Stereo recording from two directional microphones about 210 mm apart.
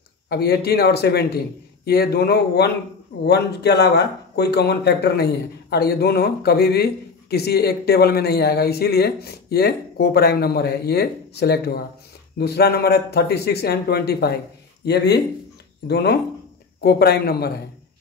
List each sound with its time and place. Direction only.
0.3 s speech: 50° left (ahead or behind)